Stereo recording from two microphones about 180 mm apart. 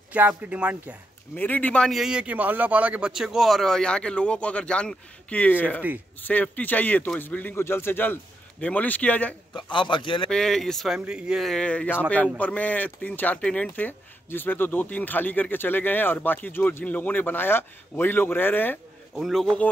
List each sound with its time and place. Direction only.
0.1 s speech: 10° right (ahead or behind)
1.3 s speech: 10° left (ahead or behind)
9.7 s a man's voice: 25° left (ahead or behind)
10.3 s speech: 5° left (ahead or behind)
19.1 s speech: centre (ahead or behind)